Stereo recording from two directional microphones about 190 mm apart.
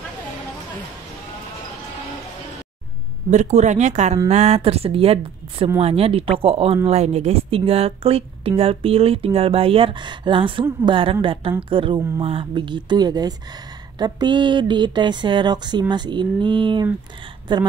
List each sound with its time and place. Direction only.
3.3 s speech: 35° right (ahead or behind)